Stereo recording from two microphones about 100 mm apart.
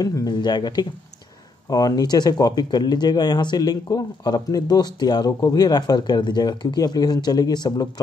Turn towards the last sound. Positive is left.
turn(degrees=40)  # may be behind; listen again after turning